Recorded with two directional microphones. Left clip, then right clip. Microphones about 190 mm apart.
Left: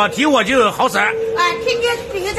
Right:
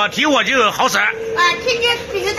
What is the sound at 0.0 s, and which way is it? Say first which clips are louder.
A man's voice: left 1 dB; 5° left (ahead or behind).